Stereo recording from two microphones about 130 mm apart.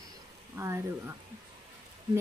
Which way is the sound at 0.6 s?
20° right (ahead or behind).